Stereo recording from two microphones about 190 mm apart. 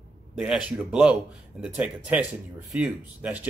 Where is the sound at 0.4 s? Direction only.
5° right (ahead or behind).